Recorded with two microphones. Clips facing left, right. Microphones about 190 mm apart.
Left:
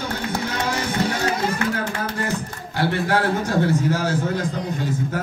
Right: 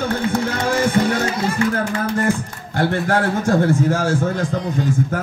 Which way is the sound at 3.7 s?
50° right (ahead or behind).